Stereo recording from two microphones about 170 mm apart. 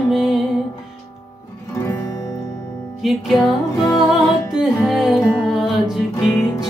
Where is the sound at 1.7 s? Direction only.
15° left (ahead or behind).